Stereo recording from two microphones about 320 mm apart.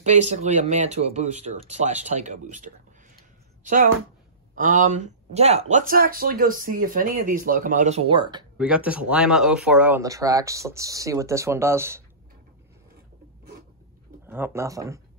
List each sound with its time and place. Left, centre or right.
0.0 s speech: right
8.5 s speech: centre
14.2 s speech: centre